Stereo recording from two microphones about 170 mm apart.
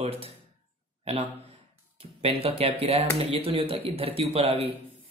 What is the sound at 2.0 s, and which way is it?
Speech, 35° right (ahead or behind).